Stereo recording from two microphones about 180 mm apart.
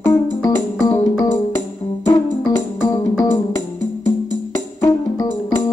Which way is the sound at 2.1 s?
15° left (ahead or behind).